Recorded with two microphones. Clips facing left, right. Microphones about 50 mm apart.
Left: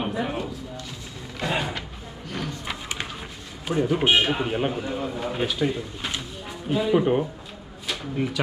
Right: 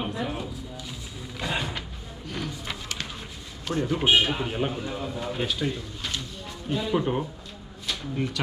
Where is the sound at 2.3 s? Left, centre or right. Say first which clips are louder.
Left 2 dB; centre.